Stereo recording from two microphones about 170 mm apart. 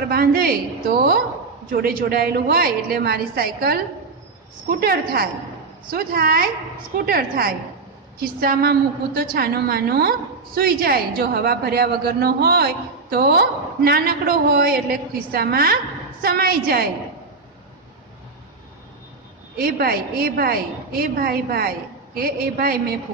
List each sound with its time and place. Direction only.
0.1 s a woman's voice: 60° right (ahead or behind)
19.5 s a woman's voice: 60° right (ahead or behind)